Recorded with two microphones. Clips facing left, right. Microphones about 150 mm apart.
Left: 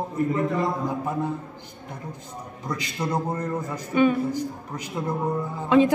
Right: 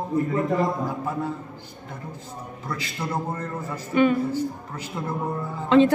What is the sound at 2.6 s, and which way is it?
A woman's voice, 20° left (ahead or behind).